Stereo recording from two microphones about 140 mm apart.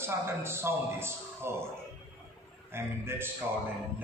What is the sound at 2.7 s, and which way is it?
Speech, 15° right (ahead or behind).